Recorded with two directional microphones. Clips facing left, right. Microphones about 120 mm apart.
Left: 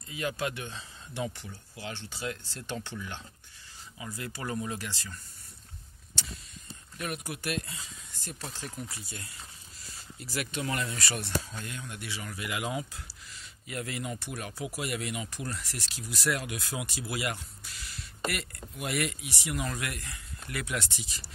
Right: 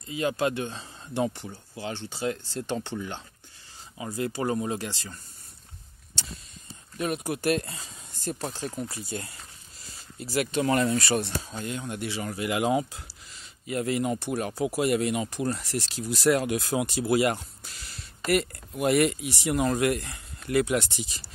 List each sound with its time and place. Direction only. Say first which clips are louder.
0.1 s speech: right 7 dB; 30° right (ahead or behind)
7.0 s speech: right 8 dB; 30° right (ahead or behind)
7.5 s speech: right 7 dB; 40° right (ahead or behind)
10.1 s speech: right 8 dB; 25° right (ahead or behind)
10.6 s speech: right 11 dB; 40° right (ahead or behind)
11.1 s speech: right 6 dB; 25° right (ahead or behind)